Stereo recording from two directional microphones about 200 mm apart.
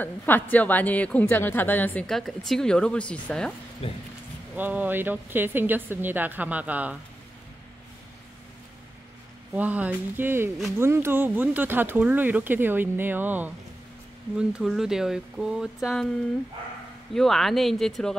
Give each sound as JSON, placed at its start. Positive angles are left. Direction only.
{"t": 0.0, "sound": "a woman's voice", "side_deg": 10}
{"t": 3.8, "sound": "a sound", "side_deg": 30}
{"t": 4.6, "sound": "speech", "side_deg": -10}
{"t": 9.5, "sound": "speech", "side_deg": -10}
{"t": 17.1, "sound": "speech", "side_deg": 0}